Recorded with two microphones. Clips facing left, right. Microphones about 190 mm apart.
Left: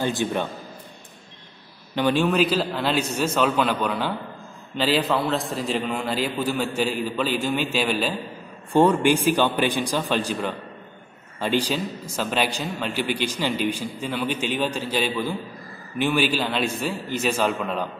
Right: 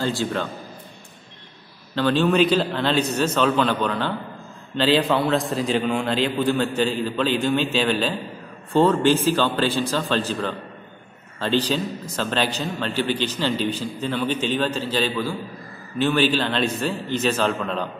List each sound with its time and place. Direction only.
0.0 s a man's voice: 20° left (ahead or behind)
2.0 s a man's voice: 10° left (ahead or behind)